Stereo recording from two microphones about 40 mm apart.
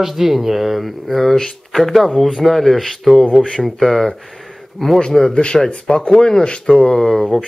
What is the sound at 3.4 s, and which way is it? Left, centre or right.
Speech, centre.